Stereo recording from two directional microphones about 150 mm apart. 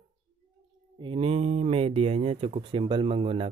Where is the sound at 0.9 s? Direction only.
35° right (ahead or behind).